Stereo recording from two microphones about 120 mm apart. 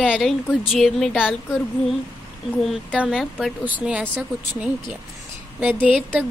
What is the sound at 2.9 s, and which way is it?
A woman's voice, 10° right (ahead or behind).